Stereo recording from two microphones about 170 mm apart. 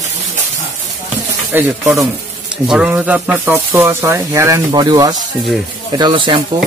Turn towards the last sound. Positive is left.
turn(degrees=-30)  # may be behind; listen again after turning